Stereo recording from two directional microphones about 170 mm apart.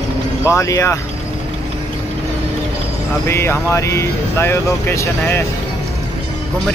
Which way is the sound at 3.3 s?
15° left (ahead or behind).